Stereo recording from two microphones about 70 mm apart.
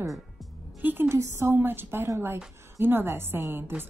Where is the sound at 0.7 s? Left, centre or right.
Right.